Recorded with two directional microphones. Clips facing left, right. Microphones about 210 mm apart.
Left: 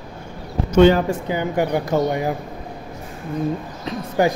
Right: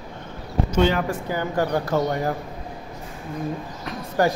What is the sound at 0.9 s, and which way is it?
Speech, 20° left (ahead or behind).